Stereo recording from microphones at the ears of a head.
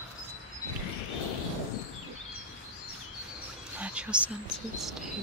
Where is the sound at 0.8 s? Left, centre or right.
Left.